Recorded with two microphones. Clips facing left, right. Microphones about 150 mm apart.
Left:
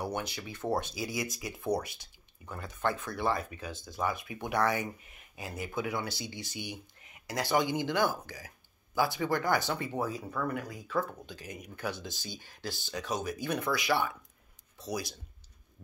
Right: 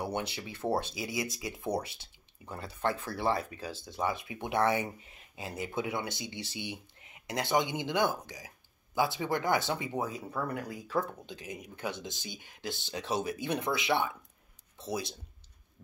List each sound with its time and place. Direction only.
0.0 s speech: 25° right (ahead or behind)
10.3 s speech: 30° right (ahead or behind)